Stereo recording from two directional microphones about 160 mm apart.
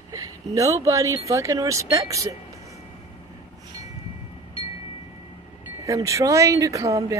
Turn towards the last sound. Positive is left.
turn(degrees=-20)  # may be behind; listen again after turning